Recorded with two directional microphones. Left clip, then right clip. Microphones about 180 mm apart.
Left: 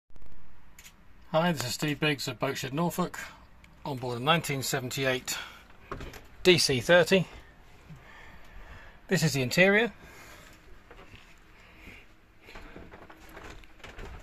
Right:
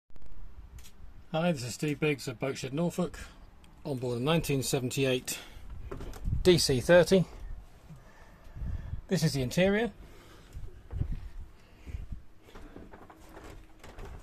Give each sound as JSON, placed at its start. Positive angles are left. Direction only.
{"t": 1.3, "sound": "speech", "side_deg": -5}
{"t": 3.9, "sound": "speech", "side_deg": -30}
{"t": 6.4, "sound": "speech", "side_deg": -15}
{"t": 9.0, "sound": "speech", "side_deg": -10}